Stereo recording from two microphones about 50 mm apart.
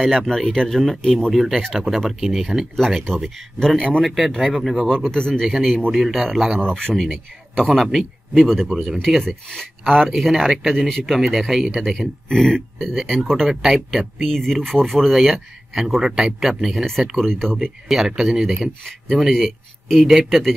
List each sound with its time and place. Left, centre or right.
0.0 s speech: centre
1.3 s speech: centre
2.7 s speech: centre
4.0 s speech: centre
5.1 s speech: centre
5.5 s speech: centre
6.6 s speech: centre
7.0 s speech: centre
12.3 s speech: centre
13.5 s speech: centre
17.8 s speech: centre